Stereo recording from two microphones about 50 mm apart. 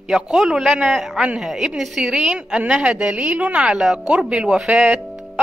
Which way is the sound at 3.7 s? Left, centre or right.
Centre.